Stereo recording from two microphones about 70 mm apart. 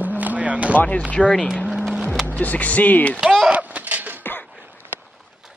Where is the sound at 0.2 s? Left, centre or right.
Right.